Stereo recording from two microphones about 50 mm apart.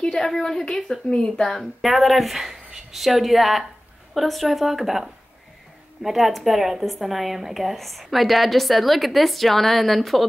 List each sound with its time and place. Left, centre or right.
0.0 s a woman's voice: centre
1.5 s a woman's voice: centre